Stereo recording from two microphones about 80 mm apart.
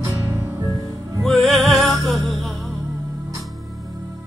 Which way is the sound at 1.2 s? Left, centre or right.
Centre.